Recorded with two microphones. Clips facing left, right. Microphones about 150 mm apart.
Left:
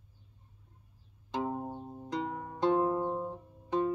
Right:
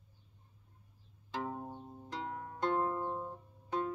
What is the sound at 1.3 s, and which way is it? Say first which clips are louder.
Music: left 5 dB; 20° left (ahead or behind).